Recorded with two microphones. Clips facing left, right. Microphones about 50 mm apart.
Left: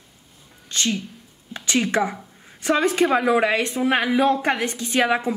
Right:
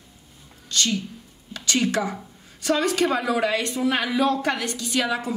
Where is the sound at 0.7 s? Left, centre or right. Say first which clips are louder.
Even; left.